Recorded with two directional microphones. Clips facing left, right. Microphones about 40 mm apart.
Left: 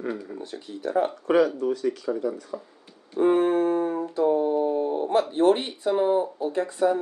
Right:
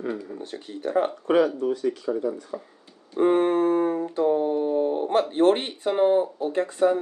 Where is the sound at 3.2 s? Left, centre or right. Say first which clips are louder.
Even; right.